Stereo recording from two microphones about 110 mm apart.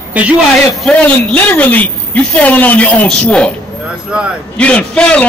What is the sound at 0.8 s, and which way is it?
A woman's voice, 10° left (ahead or behind).